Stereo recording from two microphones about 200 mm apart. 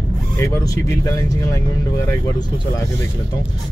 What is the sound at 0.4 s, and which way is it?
Speech, 15° left (ahead or behind).